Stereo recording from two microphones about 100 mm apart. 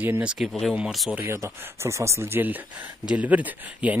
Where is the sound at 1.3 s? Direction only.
30° right (ahead or behind).